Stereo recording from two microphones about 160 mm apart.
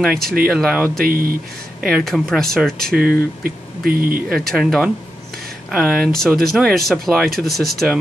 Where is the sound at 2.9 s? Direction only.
65° right (ahead or behind).